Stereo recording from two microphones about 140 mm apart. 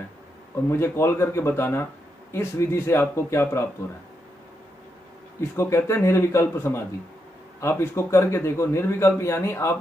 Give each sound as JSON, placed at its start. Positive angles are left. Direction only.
{"t": 0.7, "sound": "speech", "side_deg": 20}
{"t": 5.6, "sound": "speech", "side_deg": 20}